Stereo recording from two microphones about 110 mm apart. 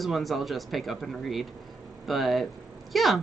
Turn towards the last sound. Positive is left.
turn(degrees=0)  # may be behind; listen again after turning